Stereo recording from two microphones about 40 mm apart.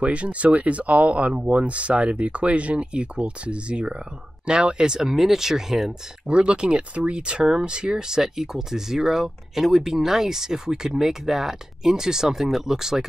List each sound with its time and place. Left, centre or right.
0.0 s speech: right; by 5.9 s centre
6.2 s speech: right